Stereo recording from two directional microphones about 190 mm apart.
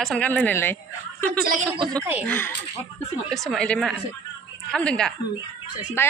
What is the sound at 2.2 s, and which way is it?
Speech, 10° left (ahead or behind).